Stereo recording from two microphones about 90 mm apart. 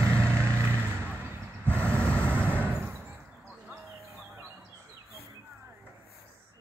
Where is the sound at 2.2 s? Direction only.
20° right (ahead or behind).